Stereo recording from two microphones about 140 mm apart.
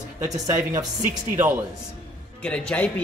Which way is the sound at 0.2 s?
20° right (ahead or behind).